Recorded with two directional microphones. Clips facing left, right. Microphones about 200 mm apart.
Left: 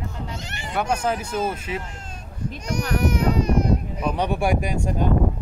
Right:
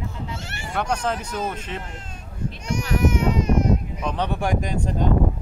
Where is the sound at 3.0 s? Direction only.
35° left (ahead or behind).